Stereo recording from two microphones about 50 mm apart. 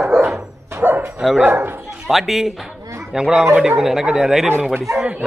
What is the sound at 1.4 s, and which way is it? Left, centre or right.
Speech, right.